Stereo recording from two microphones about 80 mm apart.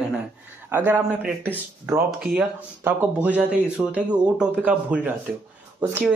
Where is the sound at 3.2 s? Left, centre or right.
Centre.